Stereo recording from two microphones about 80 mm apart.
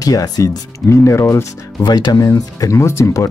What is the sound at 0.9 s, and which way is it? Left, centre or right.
Speech, left.